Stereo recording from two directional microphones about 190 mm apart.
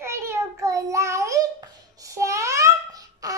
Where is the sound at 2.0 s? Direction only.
15° right (ahead or behind).